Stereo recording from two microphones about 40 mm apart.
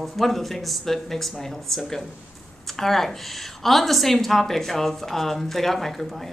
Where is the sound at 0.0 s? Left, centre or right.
Centre.